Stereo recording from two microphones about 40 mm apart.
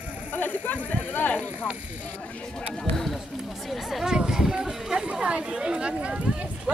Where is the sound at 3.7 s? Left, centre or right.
Centre.